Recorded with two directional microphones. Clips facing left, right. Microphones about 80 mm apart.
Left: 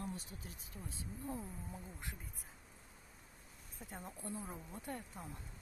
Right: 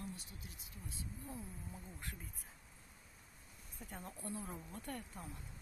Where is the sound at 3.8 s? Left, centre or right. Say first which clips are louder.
Even; centre.